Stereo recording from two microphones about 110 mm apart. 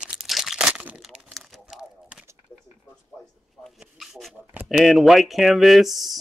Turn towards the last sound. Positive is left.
turn(degrees=0)  # may be behind; listen again after turning